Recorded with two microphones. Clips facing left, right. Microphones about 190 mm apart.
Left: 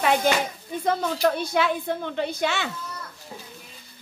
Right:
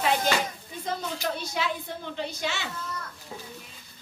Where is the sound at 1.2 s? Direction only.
55° left (ahead or behind).